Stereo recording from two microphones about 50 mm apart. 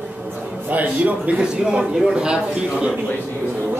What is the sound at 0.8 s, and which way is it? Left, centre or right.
Speech, right.